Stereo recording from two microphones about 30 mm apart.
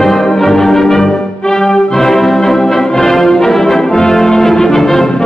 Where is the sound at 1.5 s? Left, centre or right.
Centre.